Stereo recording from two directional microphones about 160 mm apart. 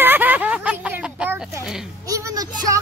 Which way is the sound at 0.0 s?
10° right (ahead or behind).